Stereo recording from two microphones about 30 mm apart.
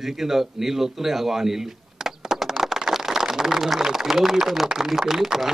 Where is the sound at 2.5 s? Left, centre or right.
Centre.